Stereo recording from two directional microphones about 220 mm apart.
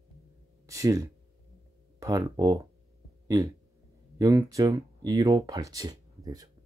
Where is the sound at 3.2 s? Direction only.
15° right (ahead or behind).